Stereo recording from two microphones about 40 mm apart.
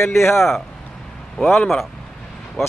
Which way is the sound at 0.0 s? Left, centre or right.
Left.